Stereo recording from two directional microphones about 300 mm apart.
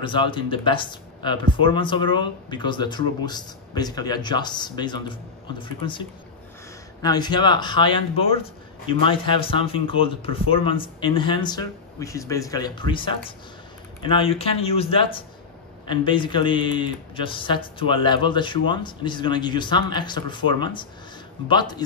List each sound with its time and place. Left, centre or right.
0.0 s speech: centre